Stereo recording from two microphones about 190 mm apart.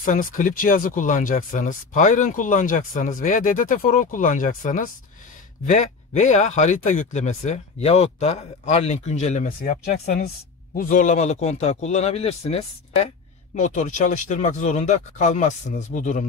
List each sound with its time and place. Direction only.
0.0 s speech: 45° left (ahead or behind)
10.0 s speech: 55° left (ahead or behind)
10.8 s speech: 40° left (ahead or behind)